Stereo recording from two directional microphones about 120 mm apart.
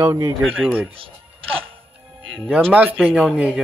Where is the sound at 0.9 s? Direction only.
50° right (ahead or behind).